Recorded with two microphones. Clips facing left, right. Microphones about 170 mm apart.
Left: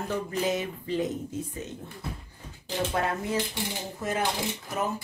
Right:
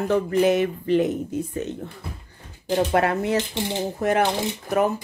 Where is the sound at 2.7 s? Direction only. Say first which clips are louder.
Right 8 dB; 70° right (ahead or behind).